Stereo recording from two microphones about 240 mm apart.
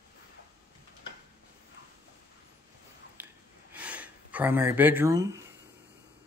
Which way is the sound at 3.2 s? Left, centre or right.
Centre.